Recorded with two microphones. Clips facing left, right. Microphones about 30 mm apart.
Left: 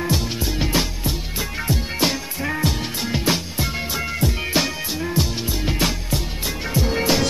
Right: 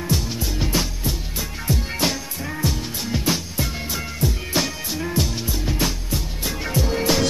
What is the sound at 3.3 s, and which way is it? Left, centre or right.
Music, left.